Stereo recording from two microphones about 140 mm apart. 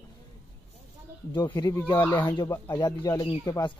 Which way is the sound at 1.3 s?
30° left (ahead or behind).